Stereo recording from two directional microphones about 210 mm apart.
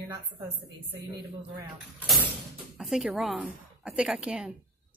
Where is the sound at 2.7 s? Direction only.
Centre (ahead or behind).